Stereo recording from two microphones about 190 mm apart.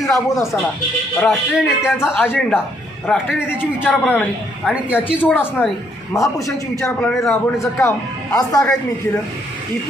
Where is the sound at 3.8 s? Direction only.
10° left (ahead or behind).